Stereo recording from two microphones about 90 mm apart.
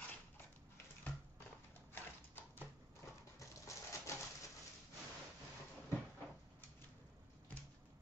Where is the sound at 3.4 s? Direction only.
35° left (ahead or behind).